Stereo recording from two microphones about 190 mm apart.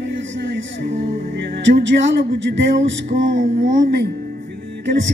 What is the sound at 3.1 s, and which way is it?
A man's voice, 70° right (ahead or behind).